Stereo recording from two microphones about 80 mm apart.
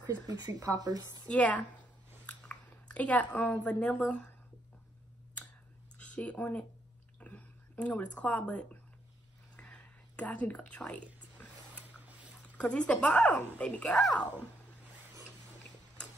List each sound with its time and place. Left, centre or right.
0.0 s speech: right
1.2 s a woman's voice: centre
2.2 s chewing: centre
3.6 s a woman's voice: centre
5.9 s speech: centre
7.2 s a sound: centre
9.6 s whispering: centre
12.5 s a woman's voice: centre
13.8 s speech: centre